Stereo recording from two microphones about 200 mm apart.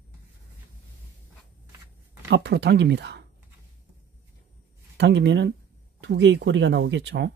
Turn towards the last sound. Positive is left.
turn(degrees=-60)  # may be behind; listen again after turning